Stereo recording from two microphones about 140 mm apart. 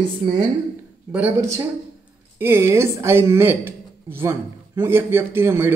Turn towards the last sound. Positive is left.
turn(degrees=-15)  # may be behind; listen again after turning